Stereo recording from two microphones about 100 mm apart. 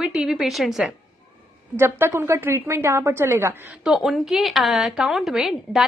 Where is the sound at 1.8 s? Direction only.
25° right (ahead or behind).